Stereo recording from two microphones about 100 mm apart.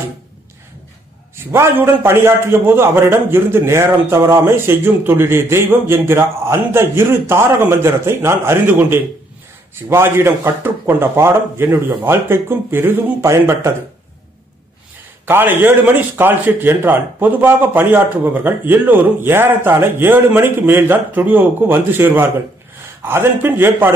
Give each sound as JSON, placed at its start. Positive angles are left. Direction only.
{"t": 1.3, "sound": "a man's voice", "side_deg": -25}
{"t": 15.2, "sound": "a man's voice", "side_deg": -20}